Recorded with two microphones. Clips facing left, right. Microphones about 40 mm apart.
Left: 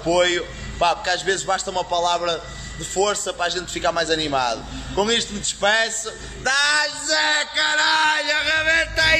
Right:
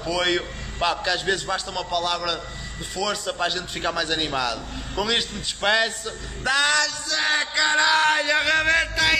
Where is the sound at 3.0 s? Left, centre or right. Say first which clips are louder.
Left 6 dB; left.